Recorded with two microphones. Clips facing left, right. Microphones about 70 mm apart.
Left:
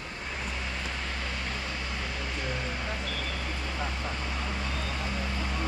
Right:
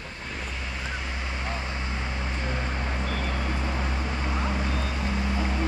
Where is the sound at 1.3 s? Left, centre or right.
Right.